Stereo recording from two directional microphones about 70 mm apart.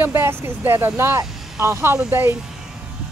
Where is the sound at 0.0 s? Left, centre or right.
Right.